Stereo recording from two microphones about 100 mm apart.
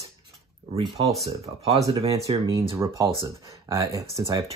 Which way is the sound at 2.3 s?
65° right (ahead or behind).